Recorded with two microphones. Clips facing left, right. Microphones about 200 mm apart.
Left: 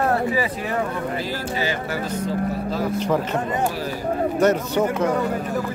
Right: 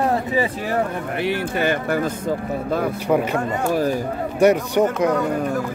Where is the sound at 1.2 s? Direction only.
65° right (ahead or behind).